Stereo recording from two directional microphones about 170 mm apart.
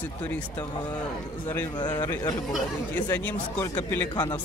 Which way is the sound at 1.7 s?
25° left (ahead or behind).